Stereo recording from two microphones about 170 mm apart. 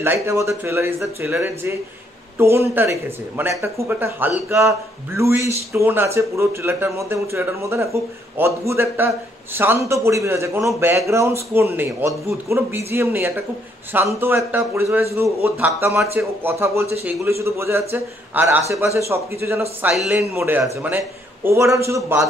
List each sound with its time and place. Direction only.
0.0 s a man's voice: 15° right (ahead or behind)
19.8 s a man's voice: 5° right (ahead or behind)